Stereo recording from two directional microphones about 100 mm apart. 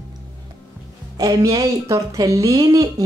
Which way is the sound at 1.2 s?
35° right (ahead or behind).